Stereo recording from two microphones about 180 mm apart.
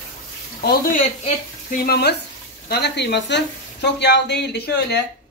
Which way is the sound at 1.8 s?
65° left (ahead or behind).